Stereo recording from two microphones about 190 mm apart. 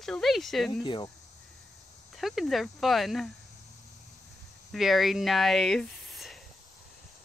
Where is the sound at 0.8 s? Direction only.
25° left (ahead or behind).